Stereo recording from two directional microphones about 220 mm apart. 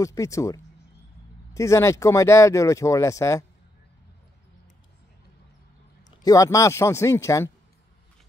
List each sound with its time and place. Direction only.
0.0 s speech: 15° left (ahead or behind)
6.2 s speech: 15° left (ahead or behind)